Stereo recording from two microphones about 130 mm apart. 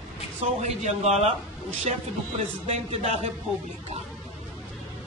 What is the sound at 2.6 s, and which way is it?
Speech, 65° right (ahead or behind).